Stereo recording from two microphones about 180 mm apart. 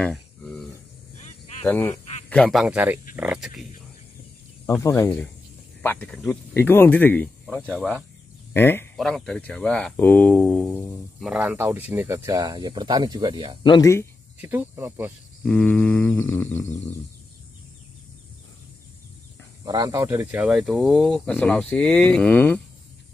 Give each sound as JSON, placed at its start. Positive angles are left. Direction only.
{"t": 0.0, "sound": "a sound", "side_deg": 5}
{"t": 1.6, "sound": "speech", "side_deg": 10}
{"t": 4.6, "sound": "speech", "side_deg": 15}
{"t": 11.2, "sound": "speech", "side_deg": -5}
{"t": 13.7, "sound": "speech", "side_deg": 20}
{"t": 14.4, "sound": "speech", "side_deg": -10}
{"t": 15.4, "sound": "speech", "side_deg": 5}
{"t": 19.6, "sound": "speech", "side_deg": -20}